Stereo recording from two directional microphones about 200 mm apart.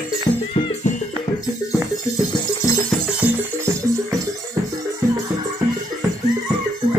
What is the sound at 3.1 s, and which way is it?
Music, 15° right (ahead or behind).